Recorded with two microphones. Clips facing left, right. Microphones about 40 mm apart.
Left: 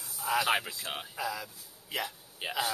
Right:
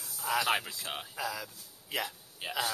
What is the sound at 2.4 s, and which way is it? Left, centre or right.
Speech, centre.